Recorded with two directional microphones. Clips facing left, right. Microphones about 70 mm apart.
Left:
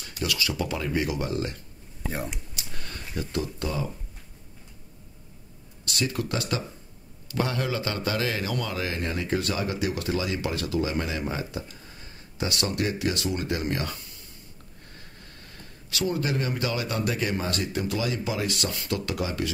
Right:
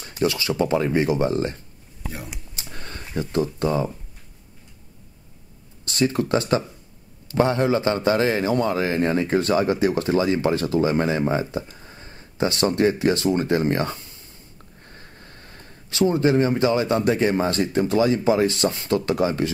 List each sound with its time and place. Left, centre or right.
0.0 s speech: right
2.5 s a sound: right
5.9 s a man's voice: right